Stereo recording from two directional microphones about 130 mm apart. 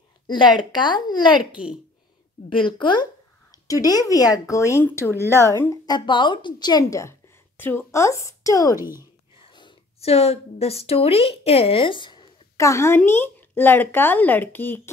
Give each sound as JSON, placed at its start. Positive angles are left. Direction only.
{"t": 0.3, "sound": "a woman's voice", "side_deg": 35}
{"t": 5.1, "sound": "a woman's voice", "side_deg": -20}
{"t": 5.5, "sound": "a woman's voice", "side_deg": 25}
{"t": 8.7, "sound": "speech", "side_deg": -20}
{"t": 9.4, "sound": "whispering", "side_deg": 35}
{"t": 9.9, "sound": "a woman's voice", "side_deg": 55}
{"t": 12.5, "sound": "speech", "side_deg": 20}